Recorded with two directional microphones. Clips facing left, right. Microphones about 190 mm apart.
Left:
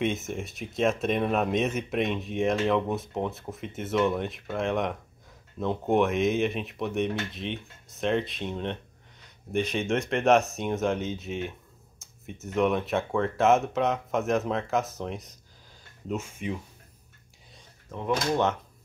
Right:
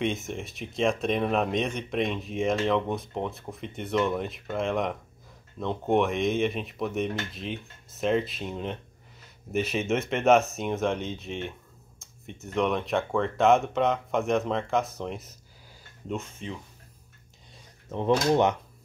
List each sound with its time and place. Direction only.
0.0 s speech: centre (ahead or behind)
17.9 s speech: 25° right (ahead or behind)